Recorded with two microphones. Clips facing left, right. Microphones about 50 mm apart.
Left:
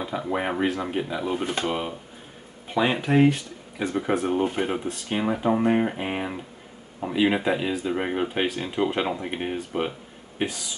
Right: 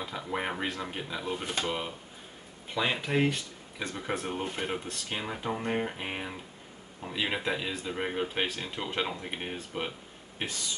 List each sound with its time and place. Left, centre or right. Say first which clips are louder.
0.0 s speech: left 7 dB; centre
1.4 s speech: left 6 dB; left
1.7 s speech: left 6 dB; centre